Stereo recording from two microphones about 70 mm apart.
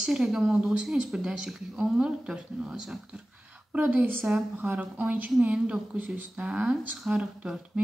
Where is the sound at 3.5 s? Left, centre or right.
Centre.